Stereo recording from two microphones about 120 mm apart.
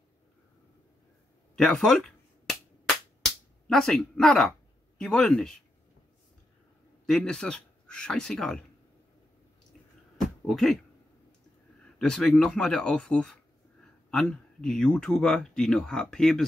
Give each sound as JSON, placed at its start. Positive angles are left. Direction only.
{"t": 1.5, "sound": "finger snapping", "side_deg": 5}
{"t": 4.9, "sound": "speech", "side_deg": 5}
{"t": 7.1, "sound": "speech", "side_deg": 5}
{"t": 10.1, "sound": "a sound", "side_deg": 0}
{"t": 11.8, "sound": "speech", "side_deg": 5}